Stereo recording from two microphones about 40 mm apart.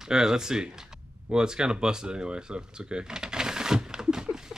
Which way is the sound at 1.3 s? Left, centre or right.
Centre.